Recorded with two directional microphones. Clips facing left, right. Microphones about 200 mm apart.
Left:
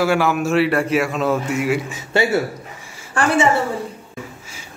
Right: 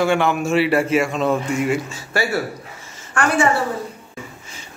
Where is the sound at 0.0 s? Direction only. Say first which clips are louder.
Even; 5° left (ahead or behind).